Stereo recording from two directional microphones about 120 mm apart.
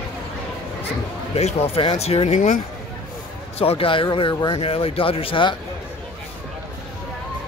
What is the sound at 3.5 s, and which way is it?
Speech, 50° left (ahead or behind).